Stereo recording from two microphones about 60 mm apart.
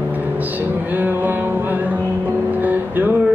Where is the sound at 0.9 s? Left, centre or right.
Right.